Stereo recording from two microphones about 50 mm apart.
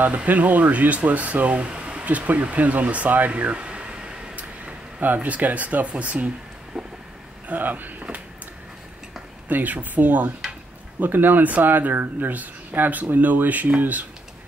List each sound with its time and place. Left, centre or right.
0.0 s speech: right
4.4 s a sound: right
7.4 s speech: right
9.5 s speech: right